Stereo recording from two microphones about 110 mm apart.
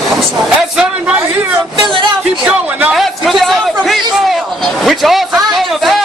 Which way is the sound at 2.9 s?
Centre (ahead or behind).